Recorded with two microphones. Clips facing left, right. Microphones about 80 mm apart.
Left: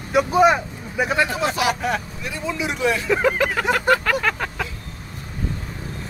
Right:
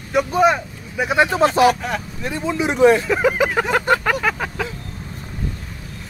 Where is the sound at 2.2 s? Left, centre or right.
Right.